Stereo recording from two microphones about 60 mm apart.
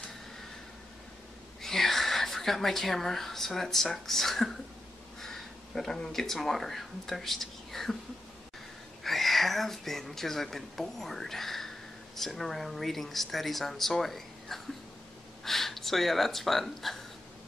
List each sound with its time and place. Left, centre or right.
1.6 s speech: centre
9.0 s speech: centre